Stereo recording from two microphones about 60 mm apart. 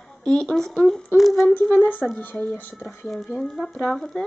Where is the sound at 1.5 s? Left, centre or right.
Left.